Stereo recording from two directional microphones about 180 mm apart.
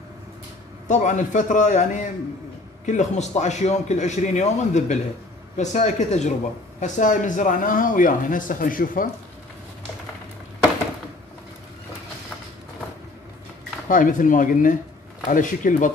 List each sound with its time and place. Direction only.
0.8 s a man's voice: 45° left (ahead or behind)
13.8 s speech: 45° left (ahead or behind)